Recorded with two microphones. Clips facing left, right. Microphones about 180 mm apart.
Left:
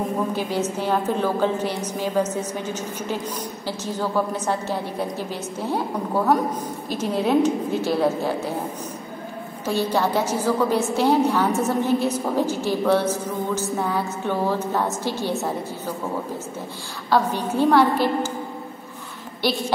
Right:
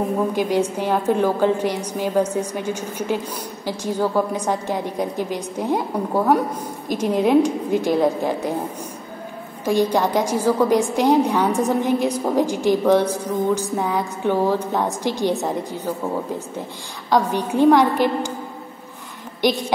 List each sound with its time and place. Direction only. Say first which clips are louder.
0.3 s a woman's voice: right 4 dB; 15° right (ahead or behind)
9.9 s a woman's voice: right 2 dB; 15° right (ahead or behind)
17.1 s a woman's voice: right 2 dB; 15° right (ahead or behind)
19.4 s a woman's voice: right 4 dB; 15° right (ahead or behind)